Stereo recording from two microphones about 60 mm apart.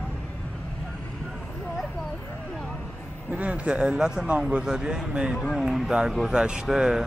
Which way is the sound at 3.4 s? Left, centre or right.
Right.